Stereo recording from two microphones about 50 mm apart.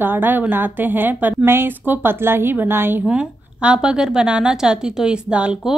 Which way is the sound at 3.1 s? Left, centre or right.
Right.